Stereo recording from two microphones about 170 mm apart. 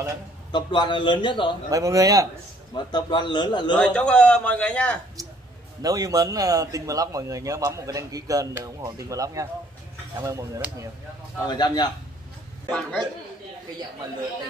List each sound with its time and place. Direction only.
0.5 s a man's voice: 25° left (ahead or behind)
1.7 s a man's voice: 20° right (ahead or behind)
2.7 s a man's voice: 25° left (ahead or behind)
3.8 s speech: 5° left (ahead or behind)
5.8 s a man's voice: 20° right (ahead or behind)
11.4 s a man's voice: 25° left (ahead or behind)
12.6 s a man's voice: 5° left (ahead or behind)